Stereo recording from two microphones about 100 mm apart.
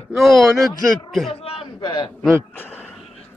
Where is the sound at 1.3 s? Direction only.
75° left (ahead or behind); by 2.1 s 60° left (ahead or behind).